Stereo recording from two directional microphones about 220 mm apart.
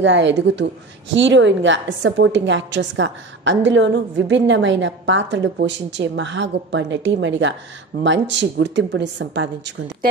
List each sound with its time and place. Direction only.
0.0 s a woman's voice: 55° right (ahead or behind)